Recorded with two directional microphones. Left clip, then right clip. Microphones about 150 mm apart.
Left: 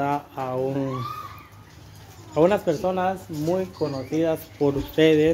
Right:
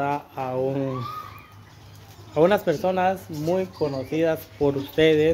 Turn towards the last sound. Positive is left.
turn(degrees=-5)  # may be behind; listen again after turning